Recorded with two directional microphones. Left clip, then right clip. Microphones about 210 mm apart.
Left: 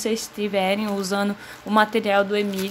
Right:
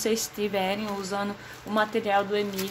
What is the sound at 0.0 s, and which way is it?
Speech, 10° left (ahead or behind).